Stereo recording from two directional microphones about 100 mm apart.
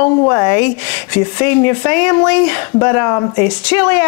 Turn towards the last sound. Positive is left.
turn(degrees=20)  # may be behind; listen again after turning